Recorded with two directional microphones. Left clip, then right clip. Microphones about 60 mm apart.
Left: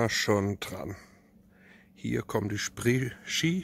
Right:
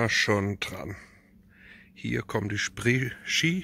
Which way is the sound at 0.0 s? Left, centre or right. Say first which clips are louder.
Right 2 dB; left.